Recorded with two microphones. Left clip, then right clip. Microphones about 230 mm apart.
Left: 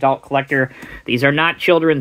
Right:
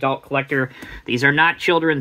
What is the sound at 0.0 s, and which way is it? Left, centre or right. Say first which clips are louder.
Speech: left 5 dB; left.